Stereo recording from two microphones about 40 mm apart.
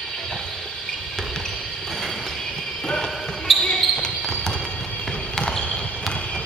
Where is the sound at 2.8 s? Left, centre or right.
Centre.